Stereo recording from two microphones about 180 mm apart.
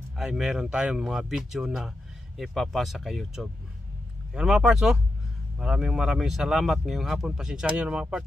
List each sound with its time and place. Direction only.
0.2 s speech: 5° right (ahead or behind)